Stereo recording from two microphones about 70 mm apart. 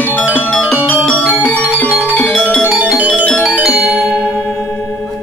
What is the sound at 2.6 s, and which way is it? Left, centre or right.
Music, centre.